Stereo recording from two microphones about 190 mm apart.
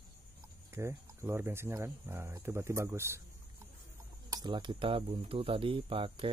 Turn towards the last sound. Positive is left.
turn(degrees=-25)  # may be behind; listen again after turning